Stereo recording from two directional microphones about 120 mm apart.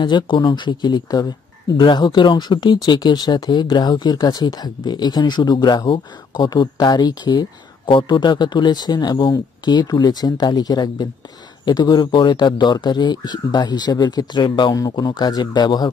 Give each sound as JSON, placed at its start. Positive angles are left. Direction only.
{"t": 0.0, "sound": "speech", "side_deg": 40}